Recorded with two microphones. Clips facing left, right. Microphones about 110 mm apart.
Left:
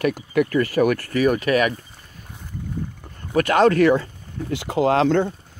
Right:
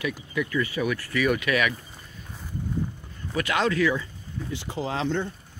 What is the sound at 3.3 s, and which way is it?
Speech, 50° left (ahead or behind).